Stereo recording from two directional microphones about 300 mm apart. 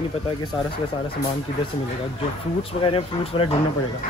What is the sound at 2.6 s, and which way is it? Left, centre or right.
Speech, centre.